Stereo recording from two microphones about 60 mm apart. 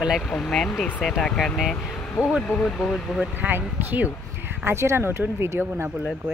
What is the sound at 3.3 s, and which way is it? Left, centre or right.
Speech, right.